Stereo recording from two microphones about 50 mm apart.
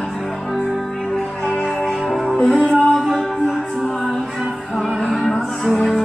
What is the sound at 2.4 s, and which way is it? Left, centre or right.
Music, centre.